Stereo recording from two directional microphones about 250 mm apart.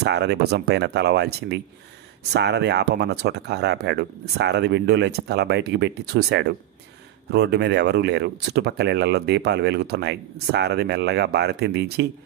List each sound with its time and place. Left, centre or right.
0.0 s speech: right